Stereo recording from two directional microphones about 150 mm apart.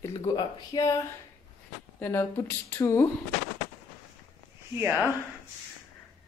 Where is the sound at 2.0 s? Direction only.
15° left (ahead or behind).